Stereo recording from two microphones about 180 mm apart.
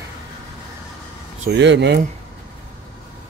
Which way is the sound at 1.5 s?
75° right (ahead or behind).